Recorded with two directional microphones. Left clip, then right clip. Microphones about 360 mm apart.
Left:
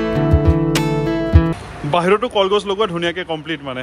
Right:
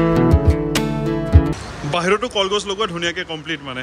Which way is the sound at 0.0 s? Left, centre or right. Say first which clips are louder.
Right 1 dB; centre.